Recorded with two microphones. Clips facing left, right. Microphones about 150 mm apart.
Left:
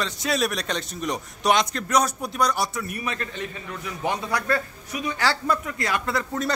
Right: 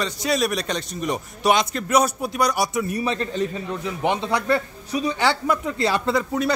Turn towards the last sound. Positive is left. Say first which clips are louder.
# right 5 dB
turn(degrees=-30)  # may be behind; listen again after turning